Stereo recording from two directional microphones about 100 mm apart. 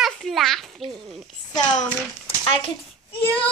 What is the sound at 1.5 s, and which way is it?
Speech, 40° left (ahead or behind).